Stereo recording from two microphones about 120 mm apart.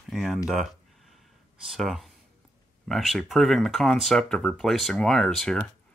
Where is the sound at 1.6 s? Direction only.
Centre (ahead or behind).